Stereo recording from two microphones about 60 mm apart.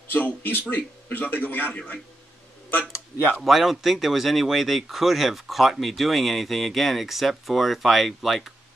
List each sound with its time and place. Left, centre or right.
0.1 s a man's voice: left
3.4 s speech: centre